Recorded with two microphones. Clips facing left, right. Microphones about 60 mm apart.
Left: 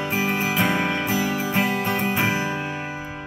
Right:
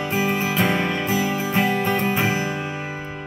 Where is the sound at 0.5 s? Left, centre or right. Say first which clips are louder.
Right 1 dB; centre.